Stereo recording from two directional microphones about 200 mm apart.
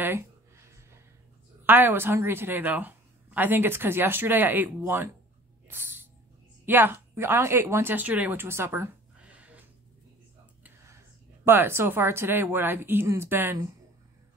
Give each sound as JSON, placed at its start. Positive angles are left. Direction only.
{"t": 1.6, "sound": "speech", "side_deg": -10}
{"t": 5.8, "sound": "a sound", "side_deg": -10}
{"t": 6.6, "sound": "speech", "side_deg": -10}
{"t": 11.4, "sound": "speech", "side_deg": -10}